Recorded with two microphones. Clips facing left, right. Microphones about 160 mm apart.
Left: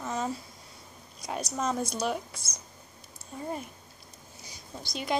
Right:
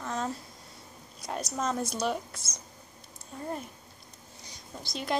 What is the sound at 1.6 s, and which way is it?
Speech, centre (ahead or behind).